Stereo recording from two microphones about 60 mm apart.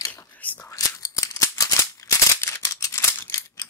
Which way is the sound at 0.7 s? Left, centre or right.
Left.